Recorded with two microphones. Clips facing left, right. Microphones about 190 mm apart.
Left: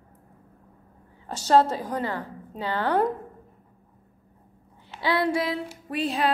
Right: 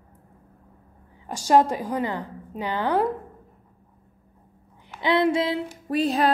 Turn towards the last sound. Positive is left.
turn(degrees=-40)  # may be behind; listen again after turning